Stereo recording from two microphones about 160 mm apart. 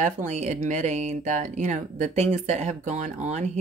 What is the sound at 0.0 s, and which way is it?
Speech, 50° right (ahead or behind).